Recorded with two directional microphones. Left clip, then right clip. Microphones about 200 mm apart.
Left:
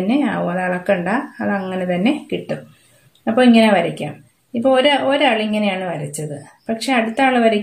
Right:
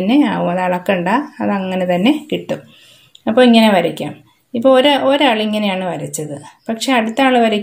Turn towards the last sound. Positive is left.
turn(degrees=-35)  # may be behind; listen again after turning